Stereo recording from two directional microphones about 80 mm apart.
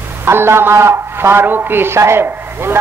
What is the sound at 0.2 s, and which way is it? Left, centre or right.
A man's voice, right.